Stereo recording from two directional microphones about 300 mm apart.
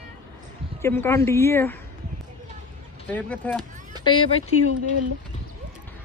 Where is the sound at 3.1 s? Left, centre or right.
Centre.